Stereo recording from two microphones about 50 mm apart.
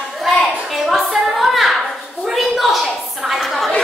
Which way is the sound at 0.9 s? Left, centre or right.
Centre.